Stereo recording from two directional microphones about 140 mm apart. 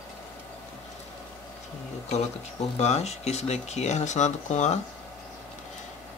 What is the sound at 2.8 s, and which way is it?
Speech, 50° left (ahead or behind).